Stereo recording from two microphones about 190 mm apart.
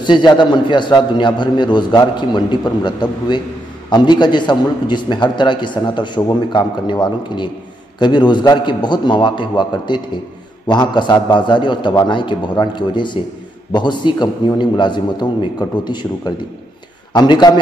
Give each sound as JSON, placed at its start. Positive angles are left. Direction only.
{"t": 0.0, "sound": "a man's voice", "side_deg": 25}